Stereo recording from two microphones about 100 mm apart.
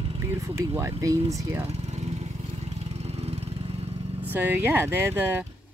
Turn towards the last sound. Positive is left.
turn(degrees=-20)  # may be behind; listen again after turning